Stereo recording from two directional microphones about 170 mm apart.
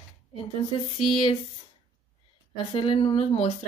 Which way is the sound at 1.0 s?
30° left (ahead or behind).